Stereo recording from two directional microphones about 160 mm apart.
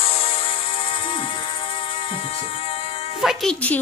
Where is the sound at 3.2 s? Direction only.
5° left (ahead or behind).